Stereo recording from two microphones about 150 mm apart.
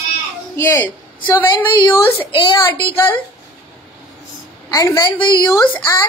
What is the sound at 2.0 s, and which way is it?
Speech, 15° left (ahead or behind).